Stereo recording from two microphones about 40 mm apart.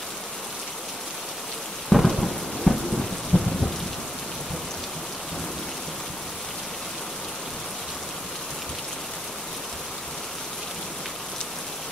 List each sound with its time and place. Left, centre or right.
1.9 s thunder: centre
3.3 s thunder: left